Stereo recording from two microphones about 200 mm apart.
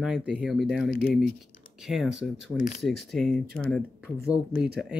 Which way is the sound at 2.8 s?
Centre (ahead or behind).